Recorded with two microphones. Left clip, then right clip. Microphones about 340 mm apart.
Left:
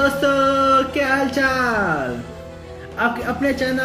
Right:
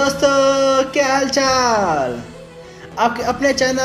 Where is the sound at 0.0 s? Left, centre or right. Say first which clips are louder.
Right 3 dB; centre.